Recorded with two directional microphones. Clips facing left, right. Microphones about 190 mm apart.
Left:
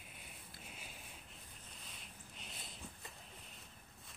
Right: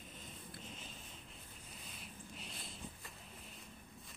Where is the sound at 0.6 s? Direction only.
10° left (ahead or behind).